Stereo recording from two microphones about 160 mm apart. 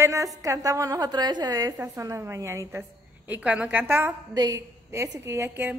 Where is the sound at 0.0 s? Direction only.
20° right (ahead or behind).